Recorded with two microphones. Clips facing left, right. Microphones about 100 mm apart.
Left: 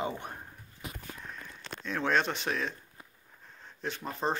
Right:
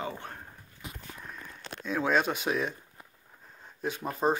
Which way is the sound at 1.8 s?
5° right (ahead or behind).